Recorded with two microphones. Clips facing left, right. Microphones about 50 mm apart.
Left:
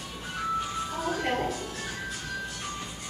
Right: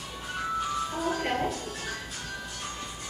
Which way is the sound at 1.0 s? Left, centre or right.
Centre.